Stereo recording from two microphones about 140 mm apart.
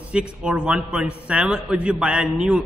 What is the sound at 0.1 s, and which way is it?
A man's voice, 5° right (ahead or behind).